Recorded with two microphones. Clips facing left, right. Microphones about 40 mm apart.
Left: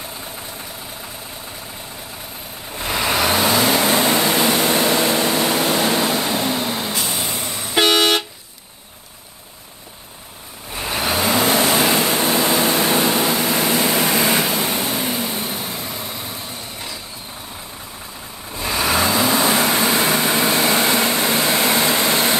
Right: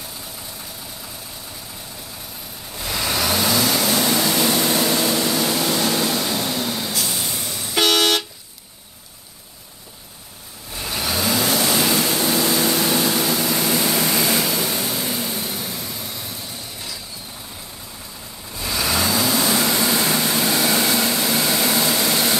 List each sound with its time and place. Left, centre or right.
2.7 s vehicle: left
10.7 s vehicle: left
18.5 s vehicle: left